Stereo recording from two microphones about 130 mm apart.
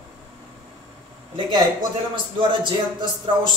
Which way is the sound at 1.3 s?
35° right (ahead or behind).